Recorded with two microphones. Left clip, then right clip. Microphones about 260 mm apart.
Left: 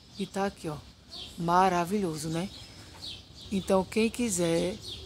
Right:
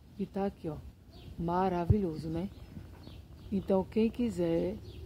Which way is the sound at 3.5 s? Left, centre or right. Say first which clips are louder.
Left 4 dB; centre.